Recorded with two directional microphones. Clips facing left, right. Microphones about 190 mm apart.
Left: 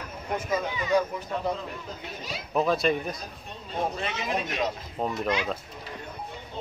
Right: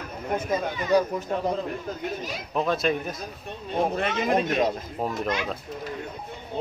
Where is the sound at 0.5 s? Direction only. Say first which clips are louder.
Right 2 dB; 45° right (ahead or behind).